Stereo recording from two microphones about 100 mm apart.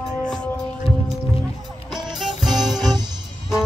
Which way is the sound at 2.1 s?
5° right (ahead or behind).